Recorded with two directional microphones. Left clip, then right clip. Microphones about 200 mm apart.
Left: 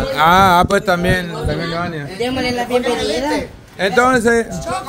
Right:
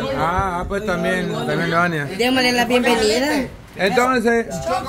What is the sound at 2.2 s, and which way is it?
Speech, 55° right (ahead or behind).